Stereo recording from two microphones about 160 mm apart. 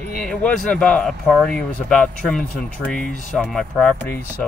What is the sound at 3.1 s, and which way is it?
Speech, 55° left (ahead or behind).